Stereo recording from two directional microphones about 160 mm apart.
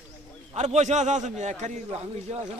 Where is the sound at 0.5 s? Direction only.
45° right (ahead or behind).